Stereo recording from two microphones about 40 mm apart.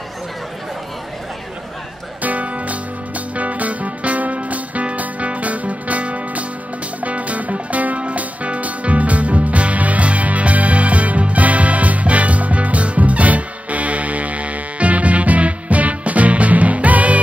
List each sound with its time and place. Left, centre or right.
2.2 s music: right